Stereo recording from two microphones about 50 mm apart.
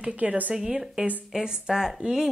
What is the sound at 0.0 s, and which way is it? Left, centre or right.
Speech, right.